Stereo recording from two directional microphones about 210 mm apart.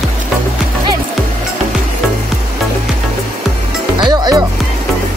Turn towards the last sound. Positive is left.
turn(degrees=-20)  # may be behind; listen again after turning